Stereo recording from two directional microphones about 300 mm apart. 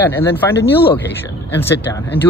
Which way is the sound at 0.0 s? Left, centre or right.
Centre.